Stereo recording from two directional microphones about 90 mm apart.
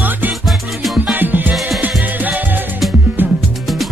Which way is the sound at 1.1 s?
20° right (ahead or behind).